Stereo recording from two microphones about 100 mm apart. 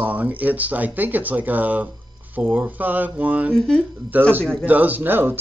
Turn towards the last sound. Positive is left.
turn(degrees=-20)  # may be behind; listen again after turning